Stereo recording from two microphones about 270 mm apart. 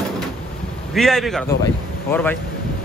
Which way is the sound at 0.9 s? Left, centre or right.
Centre.